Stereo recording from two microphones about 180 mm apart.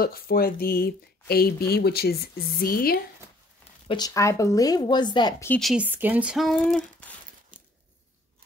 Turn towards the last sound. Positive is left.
turn(degrees=5)  # may be behind; listen again after turning